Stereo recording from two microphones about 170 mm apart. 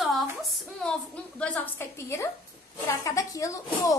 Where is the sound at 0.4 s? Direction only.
Centre (ahead or behind); by 2.2 s 15° left (ahead or behind).